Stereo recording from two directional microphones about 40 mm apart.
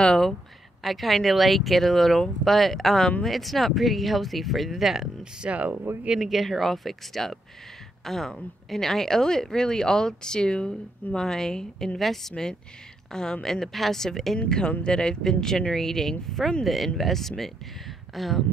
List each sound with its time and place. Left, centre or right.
0.8 s speech: centre
5.2 s speech: right
6.1 s speech: centre
15.7 s speech: centre